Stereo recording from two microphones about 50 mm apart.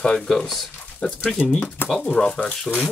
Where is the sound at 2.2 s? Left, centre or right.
Centre.